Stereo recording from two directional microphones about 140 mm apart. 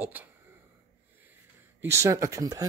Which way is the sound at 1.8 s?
20° right (ahead or behind).